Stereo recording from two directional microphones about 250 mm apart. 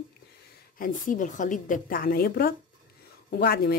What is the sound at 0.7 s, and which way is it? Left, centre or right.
Speech, left.